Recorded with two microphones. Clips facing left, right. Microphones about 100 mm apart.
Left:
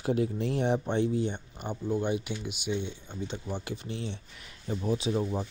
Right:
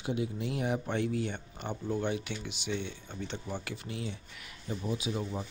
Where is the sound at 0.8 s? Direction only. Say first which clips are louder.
Left 4 dB; 25° left (ahead or behind).